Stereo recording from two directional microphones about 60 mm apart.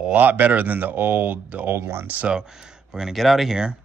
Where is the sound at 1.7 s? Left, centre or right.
Right.